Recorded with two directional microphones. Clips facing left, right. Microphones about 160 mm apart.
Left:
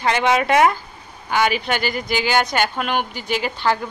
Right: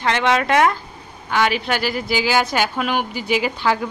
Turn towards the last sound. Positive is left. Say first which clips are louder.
# right 1 dB
turn(degrees=-5)  # may be behind; listen again after turning